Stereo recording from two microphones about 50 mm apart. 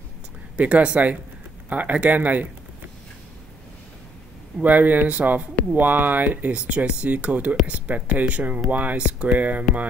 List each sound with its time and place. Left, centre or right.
0.6 s speech: right
4.6 s speech: right